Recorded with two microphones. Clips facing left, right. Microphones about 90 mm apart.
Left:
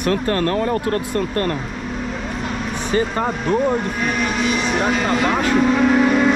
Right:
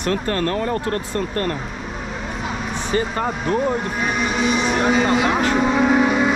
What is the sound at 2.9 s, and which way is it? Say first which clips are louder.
Speech: left 2 dB; 35° left (ahead or behind).